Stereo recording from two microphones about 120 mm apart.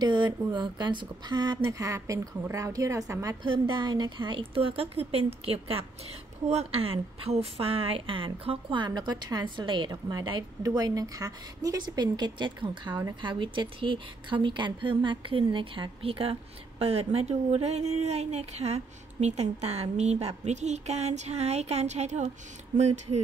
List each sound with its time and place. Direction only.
0.0 s speech: 40° right (ahead or behind)
3.4 s a woman's voice: 45° right (ahead or behind); by 23.2 s 70° right (ahead or behind)